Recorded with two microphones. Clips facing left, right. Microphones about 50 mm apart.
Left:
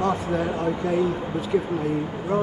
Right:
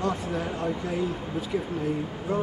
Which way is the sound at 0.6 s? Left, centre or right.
Centre.